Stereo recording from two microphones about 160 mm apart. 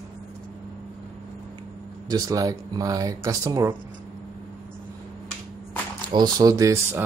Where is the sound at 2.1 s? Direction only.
20° right (ahead or behind).